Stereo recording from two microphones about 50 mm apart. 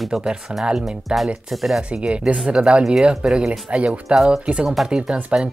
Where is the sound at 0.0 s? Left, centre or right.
Centre.